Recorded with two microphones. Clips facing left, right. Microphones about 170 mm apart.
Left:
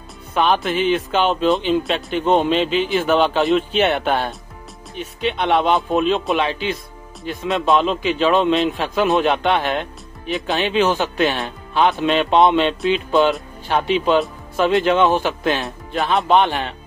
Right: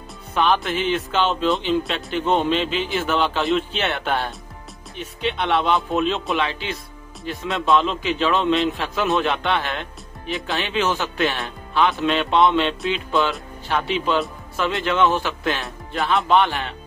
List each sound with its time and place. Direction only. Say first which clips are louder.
0.3 s speech: left 2 dB; 15° left (ahead or behind)
5.5 s speech: left 4 dB; 20° left (ahead or behind)